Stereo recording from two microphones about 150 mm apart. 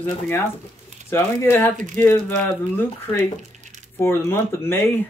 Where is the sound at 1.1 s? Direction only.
15° left (ahead or behind).